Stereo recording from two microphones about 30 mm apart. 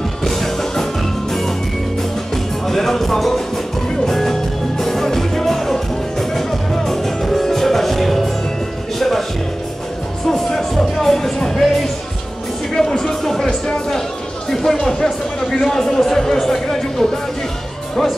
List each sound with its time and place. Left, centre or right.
0.2 s music: centre
2.3 s music: centre
10.2 s music: centre
15.6 s a man's voice: centre
16.0 s a sound: centre